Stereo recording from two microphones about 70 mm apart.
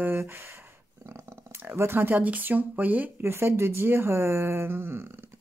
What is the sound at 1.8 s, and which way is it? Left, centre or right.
Speech, right.